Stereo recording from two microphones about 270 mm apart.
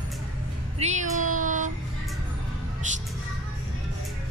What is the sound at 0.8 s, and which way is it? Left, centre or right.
Meow, right.